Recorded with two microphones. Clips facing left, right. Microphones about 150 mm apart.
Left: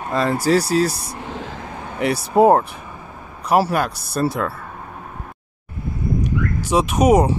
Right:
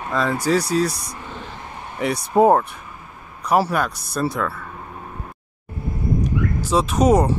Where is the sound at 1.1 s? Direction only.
85° left.